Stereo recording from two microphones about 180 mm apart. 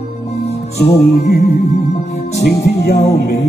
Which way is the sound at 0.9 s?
65° left (ahead or behind).